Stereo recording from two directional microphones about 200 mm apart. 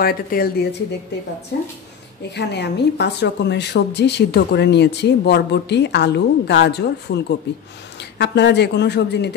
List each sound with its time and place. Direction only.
0.0 s speech: 50° left (ahead or behind)
2.3 s a woman's voice: 60° left (ahead or behind)